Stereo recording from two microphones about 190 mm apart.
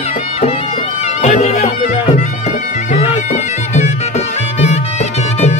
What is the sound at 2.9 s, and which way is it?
Music, 35° left (ahead or behind).